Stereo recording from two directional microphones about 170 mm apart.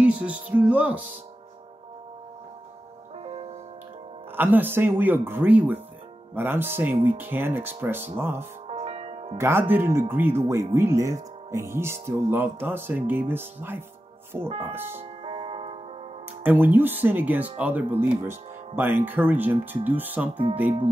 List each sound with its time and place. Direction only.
0.0 s speech: 10° right (ahead or behind)
3.2 s music: 40° right (ahead or behind)
4.4 s speech: 10° right (ahead or behind)
8.6 s music: 35° right (ahead or behind)
9.4 s speech: 15° right (ahead or behind)
15.2 s music: 35° right (ahead or behind)
16.4 s speech: 10° right (ahead or behind)